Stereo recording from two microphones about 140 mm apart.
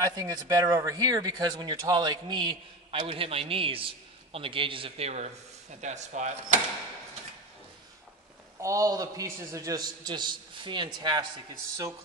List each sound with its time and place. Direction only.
0.0 s speech: 25° right (ahead or behind); by 6.6 s 55° right (ahead or behind)
8.5 s a man's voice: 25° right (ahead or behind)